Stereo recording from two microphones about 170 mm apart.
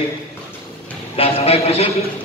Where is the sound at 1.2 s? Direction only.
35° left (ahead or behind).